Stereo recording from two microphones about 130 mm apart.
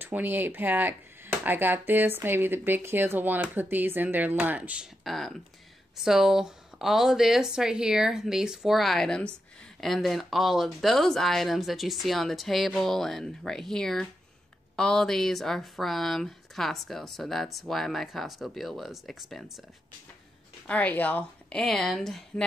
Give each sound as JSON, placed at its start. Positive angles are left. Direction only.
{"t": 0.0, "sound": "speech", "side_deg": -15}
{"t": 5.0, "sound": "speech", "side_deg": 0}
{"t": 20.6, "sound": "a woman's voice", "side_deg": 10}